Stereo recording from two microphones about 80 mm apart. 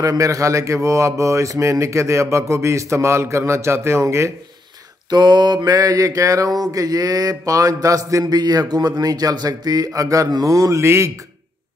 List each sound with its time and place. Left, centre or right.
0.0 s speech: right
5.1 s mantra: right
8.4 s a man's voice: right
9.8 s mantra: right
10.4 s speech: right